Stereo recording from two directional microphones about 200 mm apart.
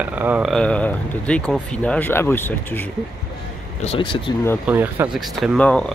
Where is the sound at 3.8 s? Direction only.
25° left (ahead or behind).